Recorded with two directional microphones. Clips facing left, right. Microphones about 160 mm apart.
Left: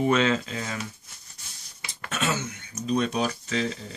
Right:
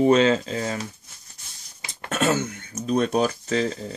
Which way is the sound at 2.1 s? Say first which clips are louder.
Right 6 dB; 50° right (ahead or behind).